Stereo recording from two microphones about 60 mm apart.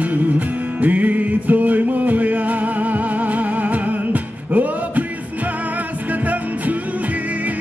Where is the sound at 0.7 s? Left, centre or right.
Right.